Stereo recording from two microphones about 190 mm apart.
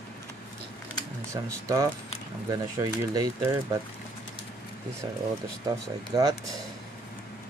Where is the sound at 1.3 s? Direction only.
15° right (ahead or behind).